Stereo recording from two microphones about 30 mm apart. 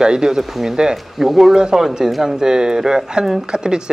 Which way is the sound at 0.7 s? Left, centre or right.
Right.